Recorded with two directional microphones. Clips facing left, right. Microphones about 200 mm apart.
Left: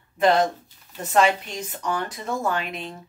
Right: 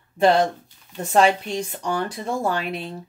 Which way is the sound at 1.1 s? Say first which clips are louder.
Right 2 dB; 30° right (ahead or behind).